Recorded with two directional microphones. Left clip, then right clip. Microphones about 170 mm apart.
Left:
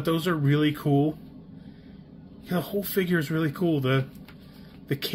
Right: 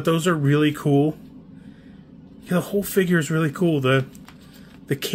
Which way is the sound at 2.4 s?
45° right (ahead or behind).